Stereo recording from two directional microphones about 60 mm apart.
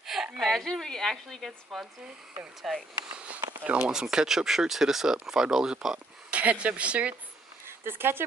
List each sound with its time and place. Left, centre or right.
0.0 s a woman's voice: centre
3.6 s speech: centre
6.3 s speech: right
7.6 s speech: right